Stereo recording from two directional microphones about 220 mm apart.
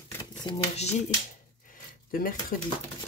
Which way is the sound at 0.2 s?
25° left (ahead or behind).